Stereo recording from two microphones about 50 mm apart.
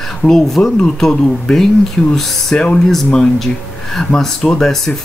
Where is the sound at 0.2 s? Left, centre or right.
Centre.